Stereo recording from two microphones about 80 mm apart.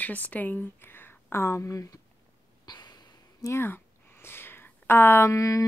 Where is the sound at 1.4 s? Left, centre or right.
Left.